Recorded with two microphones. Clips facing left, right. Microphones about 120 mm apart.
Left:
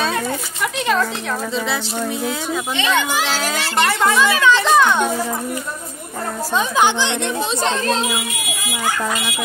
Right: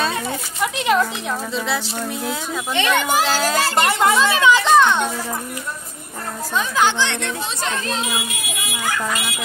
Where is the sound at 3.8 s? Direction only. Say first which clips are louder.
Left 3 dB; 20° right (ahead or behind).